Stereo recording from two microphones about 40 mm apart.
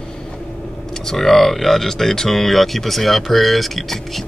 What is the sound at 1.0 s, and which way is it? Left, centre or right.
Speech, centre.